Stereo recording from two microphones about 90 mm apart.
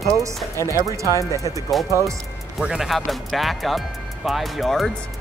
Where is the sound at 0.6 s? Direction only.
35° left (ahead or behind).